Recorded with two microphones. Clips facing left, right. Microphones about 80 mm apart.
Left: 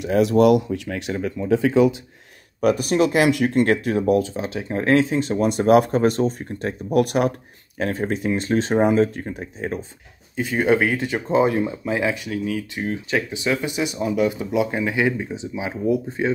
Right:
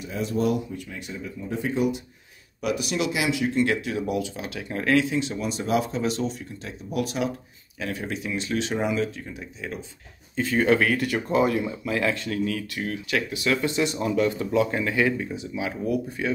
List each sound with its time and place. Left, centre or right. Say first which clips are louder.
0.0 s speech: left 10 dB; left
2.6 s speech: left 8 dB; left
7.8 s speech: left 7 dB; left
10.3 s speech: left 2 dB; centre
12.0 s speech: right 1 dB; centre
12.7 s speech: left 4 dB; left